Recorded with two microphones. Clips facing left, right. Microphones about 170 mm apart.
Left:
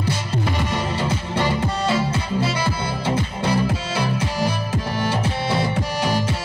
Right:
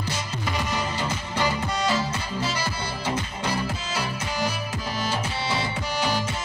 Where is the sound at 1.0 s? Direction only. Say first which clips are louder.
Left 4 dB; 30° left (ahead or behind).